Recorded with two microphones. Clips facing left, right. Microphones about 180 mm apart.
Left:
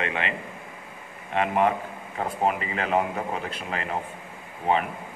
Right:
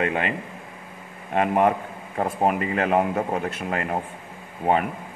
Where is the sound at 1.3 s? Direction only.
45° right (ahead or behind).